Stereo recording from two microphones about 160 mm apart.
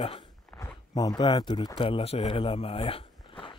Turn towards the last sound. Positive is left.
turn(degrees=30)  # may be behind; listen again after turning